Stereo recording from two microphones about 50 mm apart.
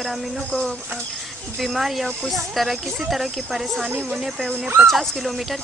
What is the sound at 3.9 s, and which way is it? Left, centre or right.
Speech, right.